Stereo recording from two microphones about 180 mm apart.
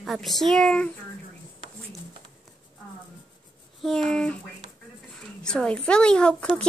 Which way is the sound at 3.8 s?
5° left (ahead or behind).